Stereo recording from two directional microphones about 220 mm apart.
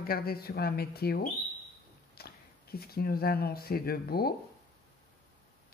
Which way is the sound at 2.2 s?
45° left (ahead or behind).